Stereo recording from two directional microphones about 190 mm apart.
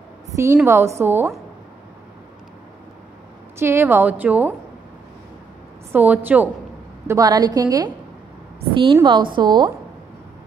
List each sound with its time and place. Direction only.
0.3 s a woman's voice: 15° right (ahead or behind)
3.5 s a woman's voice: 15° right (ahead or behind)
5.9 s a woman's voice: 10° right (ahead or behind)
7.1 s a woman's voice: 20° right (ahead or behind)